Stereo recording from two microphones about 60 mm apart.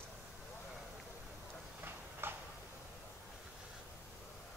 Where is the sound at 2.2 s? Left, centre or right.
Right.